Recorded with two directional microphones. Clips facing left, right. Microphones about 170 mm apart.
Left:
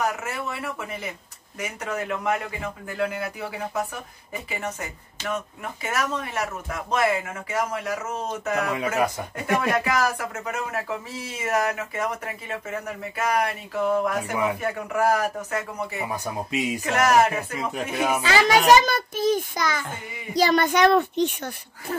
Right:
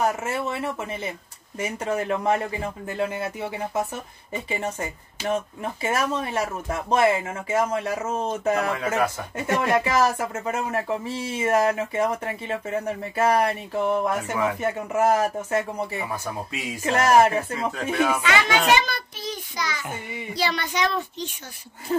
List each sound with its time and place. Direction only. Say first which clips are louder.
0.0 s speech: right 3 dB; 25° right (ahead or behind)
8.7 s speech: even; 15° left (ahead or behind)
9.9 s speech: right 3 dB; 25° right (ahead or behind)
16.5 s speech: left 6 dB; 20° left (ahead or behind)
16.8 s speech: right 3 dB; 30° right (ahead or behind)
17.9 s speech: right 1 dB; 10° left (ahead or behind)
18.2 s a woman's voice: left 3 dB; 35° left (ahead or behind); by 21.3 s 60° left (ahead or behind)